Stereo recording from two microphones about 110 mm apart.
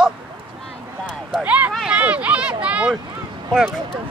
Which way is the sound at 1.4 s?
15° right (ahead or behind).